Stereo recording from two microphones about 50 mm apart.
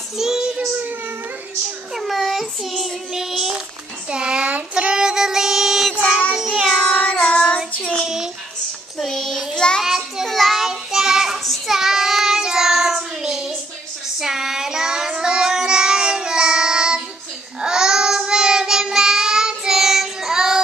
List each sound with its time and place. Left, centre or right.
0.2 s child singing: centre
2.0 s child singing: centre
4.1 s a sound: centre
4.7 s child singing: centre
7.2 s child singing: centre
8.9 s child singing: centre
9.8 s child singing: centre
10.2 s child singing: centre
10.5 s child singing: centre